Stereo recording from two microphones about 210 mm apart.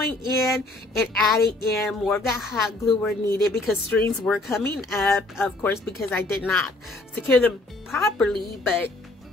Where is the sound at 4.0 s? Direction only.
10° left (ahead or behind).